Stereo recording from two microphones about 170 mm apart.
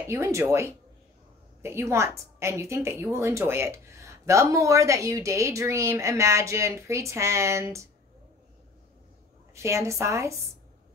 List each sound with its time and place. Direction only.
0.0 s a woman's voice: 15° right (ahead or behind)
9.5 s a woman's voice: 15° right (ahead or behind)